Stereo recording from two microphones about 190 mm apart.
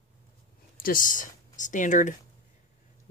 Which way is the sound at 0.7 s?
45° left (ahead or behind).